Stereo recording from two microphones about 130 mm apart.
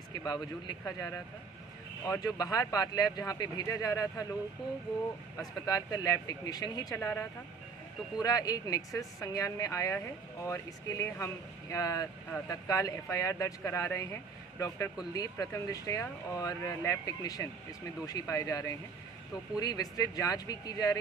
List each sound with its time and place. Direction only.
0.2 s speech: 30° left (ahead or behind)
5.7 s speech: 25° left (ahead or behind)
7.0 s a woman's voice: 20° left (ahead or behind)
15.1 s speech: 25° left (ahead or behind)